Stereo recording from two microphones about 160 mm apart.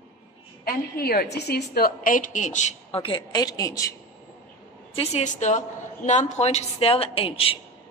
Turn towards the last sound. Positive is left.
turn(degrees=35)  # may be behind; listen again after turning